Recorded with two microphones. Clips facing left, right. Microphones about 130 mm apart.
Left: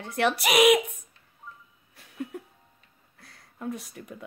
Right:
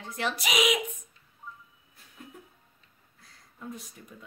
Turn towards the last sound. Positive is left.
turn(degrees=75)  # may be behind; listen again after turning